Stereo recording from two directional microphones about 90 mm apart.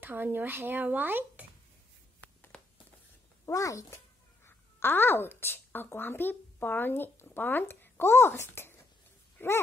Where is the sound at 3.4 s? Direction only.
40° left (ahead or behind).